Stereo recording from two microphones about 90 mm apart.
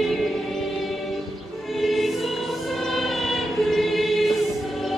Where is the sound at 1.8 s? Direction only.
Centre (ahead or behind).